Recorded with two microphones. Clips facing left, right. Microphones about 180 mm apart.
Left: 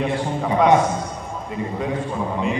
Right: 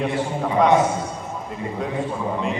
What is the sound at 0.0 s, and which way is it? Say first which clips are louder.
A man's voice: even; centre (ahead or behind).